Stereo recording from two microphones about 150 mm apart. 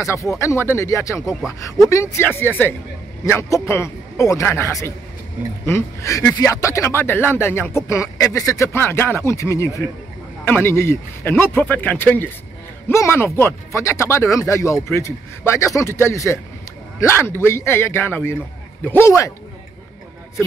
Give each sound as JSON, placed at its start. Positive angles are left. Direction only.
{"t": 0.0, "sound": "speech", "side_deg": 20}